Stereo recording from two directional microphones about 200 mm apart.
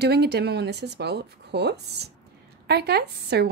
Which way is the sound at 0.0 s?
55° right (ahead or behind).